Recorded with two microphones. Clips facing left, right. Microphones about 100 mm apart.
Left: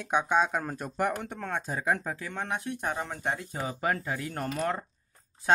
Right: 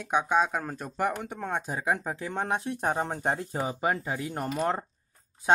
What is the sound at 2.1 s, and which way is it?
Speech, 25° right (ahead or behind).